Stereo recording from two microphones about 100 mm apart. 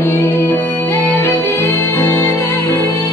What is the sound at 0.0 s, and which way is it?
Music, 25° left (ahead or behind).